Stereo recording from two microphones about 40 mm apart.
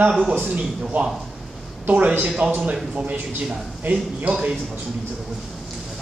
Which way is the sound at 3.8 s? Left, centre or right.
Right.